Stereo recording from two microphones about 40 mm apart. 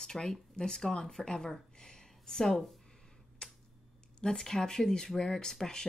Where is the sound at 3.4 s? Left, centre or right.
Left.